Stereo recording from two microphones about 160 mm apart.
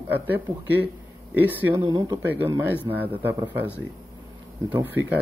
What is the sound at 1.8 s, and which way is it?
Speech, 25° right (ahead or behind).